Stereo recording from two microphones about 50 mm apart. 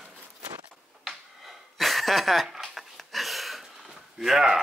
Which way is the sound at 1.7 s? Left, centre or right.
Centre.